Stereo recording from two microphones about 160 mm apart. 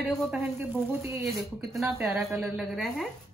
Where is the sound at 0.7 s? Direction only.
10° right (ahead or behind).